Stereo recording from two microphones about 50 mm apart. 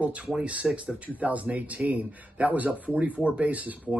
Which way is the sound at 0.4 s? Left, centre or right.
Right.